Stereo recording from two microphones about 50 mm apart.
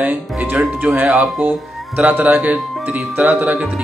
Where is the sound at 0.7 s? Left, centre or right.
Right.